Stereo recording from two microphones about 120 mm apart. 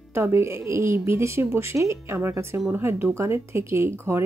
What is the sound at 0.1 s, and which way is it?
Speech, 20° right (ahead or behind).